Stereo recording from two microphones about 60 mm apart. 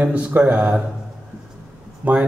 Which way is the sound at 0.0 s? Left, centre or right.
Right.